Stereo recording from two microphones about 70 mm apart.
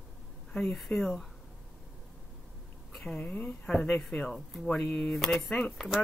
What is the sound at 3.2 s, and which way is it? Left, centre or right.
A woman's voice, centre.